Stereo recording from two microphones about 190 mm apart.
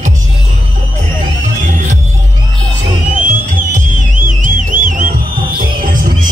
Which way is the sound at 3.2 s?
40° right (ahead or behind).